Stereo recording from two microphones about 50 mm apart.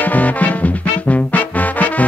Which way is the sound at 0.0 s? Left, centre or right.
Left.